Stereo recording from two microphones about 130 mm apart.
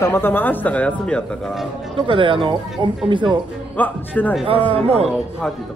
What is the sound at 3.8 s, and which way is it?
Speech, 15° left (ahead or behind).